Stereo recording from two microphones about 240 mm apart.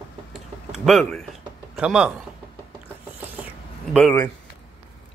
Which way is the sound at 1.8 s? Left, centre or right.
Centre.